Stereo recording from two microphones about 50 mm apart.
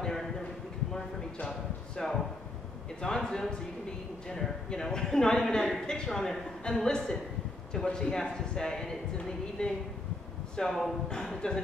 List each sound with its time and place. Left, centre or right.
0.0 s a sound: centre
2.0 s a woman's voice: centre
4.6 s a woman's voice: centre
10.7 s a woman's voice: centre